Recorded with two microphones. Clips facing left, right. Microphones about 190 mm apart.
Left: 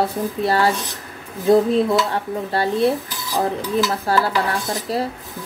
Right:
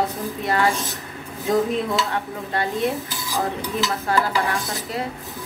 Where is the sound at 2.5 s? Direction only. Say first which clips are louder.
Left 4 dB; 35° left (ahead or behind).